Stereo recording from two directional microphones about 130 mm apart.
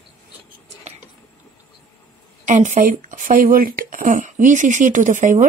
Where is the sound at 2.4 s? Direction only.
75° right (ahead or behind).